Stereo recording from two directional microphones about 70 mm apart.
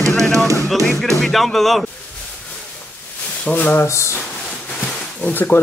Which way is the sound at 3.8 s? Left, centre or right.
Left.